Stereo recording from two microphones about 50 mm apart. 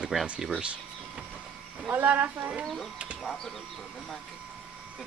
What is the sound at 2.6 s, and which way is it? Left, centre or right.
Speech, centre.